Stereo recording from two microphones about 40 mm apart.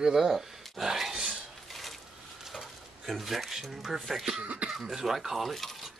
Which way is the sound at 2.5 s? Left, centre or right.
Centre.